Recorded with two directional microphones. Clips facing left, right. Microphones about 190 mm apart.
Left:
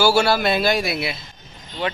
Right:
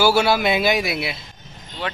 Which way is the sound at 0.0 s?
15° right (ahead or behind).